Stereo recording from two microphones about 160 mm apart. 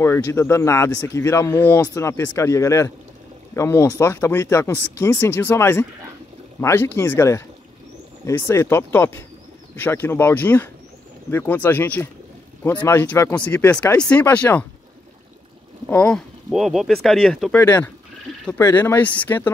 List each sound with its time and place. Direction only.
0.0 s speech: 15° left (ahead or behind)
15.9 s speech: 5° left (ahead or behind)